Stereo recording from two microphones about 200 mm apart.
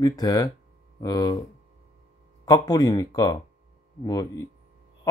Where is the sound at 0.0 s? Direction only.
15° left (ahead or behind).